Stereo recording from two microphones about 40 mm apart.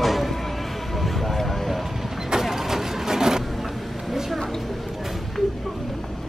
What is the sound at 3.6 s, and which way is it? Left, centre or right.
Vehicle, centre.